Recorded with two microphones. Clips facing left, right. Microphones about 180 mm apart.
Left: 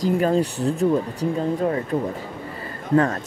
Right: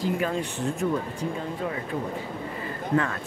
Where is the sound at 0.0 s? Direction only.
40° left (ahead or behind).